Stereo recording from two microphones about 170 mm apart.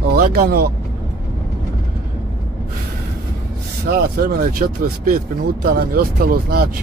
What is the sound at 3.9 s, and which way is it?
Speech, 60° right (ahead or behind).